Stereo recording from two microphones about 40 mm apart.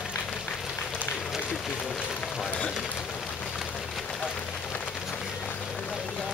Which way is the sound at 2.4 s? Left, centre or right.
Left.